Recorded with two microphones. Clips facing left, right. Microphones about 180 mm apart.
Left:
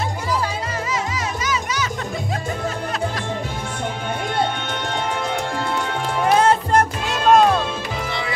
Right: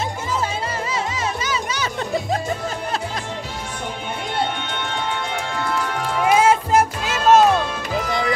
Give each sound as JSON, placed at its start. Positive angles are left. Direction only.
{"t": 1.4, "sound": "music", "side_deg": -30}
{"t": 6.2, "sound": "music", "side_deg": -10}
{"t": 8.1, "sound": "music", "side_deg": -45}